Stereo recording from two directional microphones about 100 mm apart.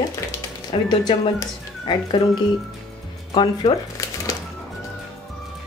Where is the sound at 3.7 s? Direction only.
35° left (ahead or behind).